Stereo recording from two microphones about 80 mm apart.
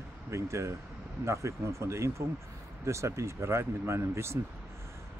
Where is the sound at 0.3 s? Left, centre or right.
Right.